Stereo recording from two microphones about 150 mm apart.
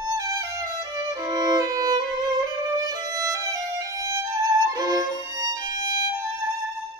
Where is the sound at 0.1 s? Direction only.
20° right (ahead or behind).